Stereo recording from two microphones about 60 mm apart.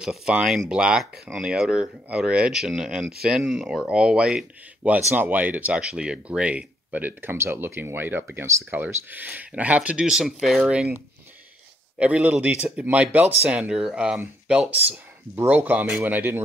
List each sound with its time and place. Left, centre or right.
0.0 s speech: centre
4.8 s speech: right
5.8 s speech: centre
10.0 s speech: centre
10.6 s speech: centre
12.0 s speech: right
14.5 s speech: right